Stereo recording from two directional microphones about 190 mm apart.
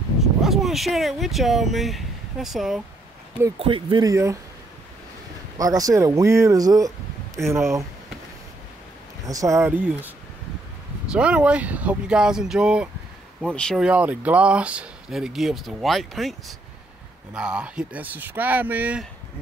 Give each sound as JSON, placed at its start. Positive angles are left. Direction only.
{"t": 0.4, "sound": "speech", "side_deg": 0}
{"t": 3.5, "sound": "speech", "side_deg": -30}
{"t": 5.6, "sound": "speech", "side_deg": -20}
{"t": 9.2, "sound": "speech", "side_deg": -15}